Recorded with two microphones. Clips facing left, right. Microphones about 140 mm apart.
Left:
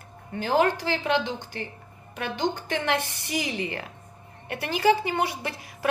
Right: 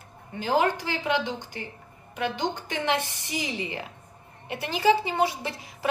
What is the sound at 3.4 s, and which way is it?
A woman's voice, 60° left (ahead or behind).